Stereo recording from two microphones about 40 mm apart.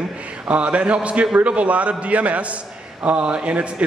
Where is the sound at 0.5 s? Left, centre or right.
Right.